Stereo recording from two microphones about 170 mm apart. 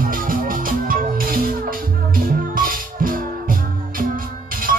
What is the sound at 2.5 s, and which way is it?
Music, 55° right (ahead or behind).